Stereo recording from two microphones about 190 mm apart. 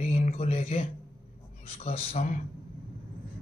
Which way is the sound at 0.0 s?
40° left (ahead or behind).